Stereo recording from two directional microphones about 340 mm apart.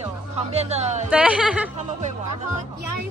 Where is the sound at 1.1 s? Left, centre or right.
Centre.